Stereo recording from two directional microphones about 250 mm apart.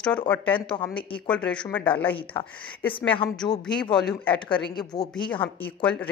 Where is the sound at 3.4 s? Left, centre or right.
Centre.